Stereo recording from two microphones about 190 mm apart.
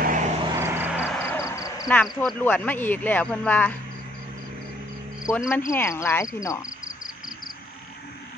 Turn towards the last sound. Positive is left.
turn(degrees=15)  # may be behind; listen again after turning